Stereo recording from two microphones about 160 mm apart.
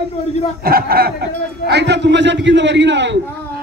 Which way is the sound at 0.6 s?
70° right (ahead or behind).